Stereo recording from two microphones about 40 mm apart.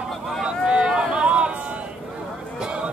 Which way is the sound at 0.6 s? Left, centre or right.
Right.